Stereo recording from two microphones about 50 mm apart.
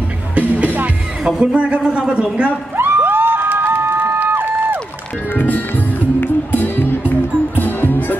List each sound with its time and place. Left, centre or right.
0.3 s music: right
1.4 s a man's voice: right
2.8 s a sound: right
5.3 s music: left